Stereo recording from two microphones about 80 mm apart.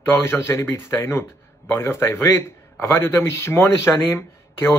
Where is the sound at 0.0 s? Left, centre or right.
Left.